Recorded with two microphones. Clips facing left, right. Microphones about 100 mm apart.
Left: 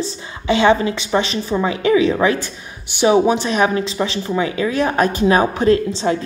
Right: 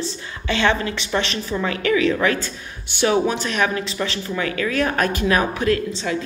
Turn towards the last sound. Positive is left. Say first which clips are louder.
# left 6 dB
turn(degrees=30)  # may be behind; listen again after turning